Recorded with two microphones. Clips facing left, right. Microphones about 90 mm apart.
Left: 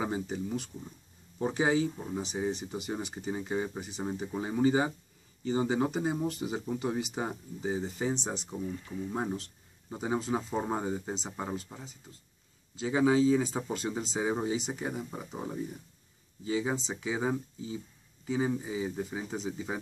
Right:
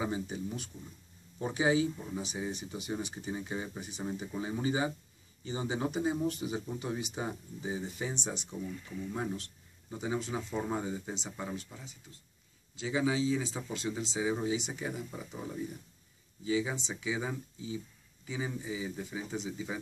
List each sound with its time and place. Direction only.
0.0 s speech: 40° left (ahead or behind)
6.8 s speech: 45° left (ahead or behind)